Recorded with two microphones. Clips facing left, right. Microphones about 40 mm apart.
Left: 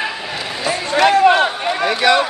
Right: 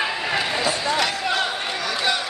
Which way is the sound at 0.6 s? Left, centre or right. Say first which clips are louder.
Left 7 dB; left.